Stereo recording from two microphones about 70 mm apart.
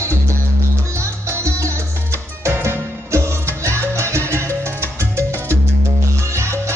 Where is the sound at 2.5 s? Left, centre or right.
Right.